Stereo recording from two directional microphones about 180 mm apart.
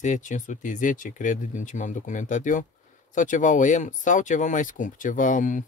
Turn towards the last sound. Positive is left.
turn(degrees=45)  # may be behind; listen again after turning